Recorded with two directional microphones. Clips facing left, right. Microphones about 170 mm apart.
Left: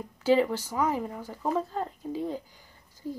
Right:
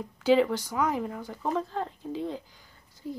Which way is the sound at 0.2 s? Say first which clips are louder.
Right 1 dB; 5° left (ahead or behind).